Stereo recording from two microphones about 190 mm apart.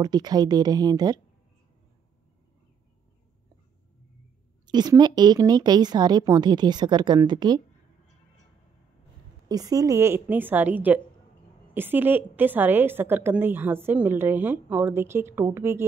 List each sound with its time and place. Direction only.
0.0 s speech: 20° right (ahead or behind)
4.6 s speech: 20° right (ahead or behind)
9.5 s a woman's voice: 20° right (ahead or behind)